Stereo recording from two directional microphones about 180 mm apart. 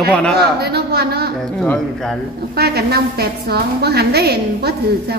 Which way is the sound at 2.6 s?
60° right (ahead or behind).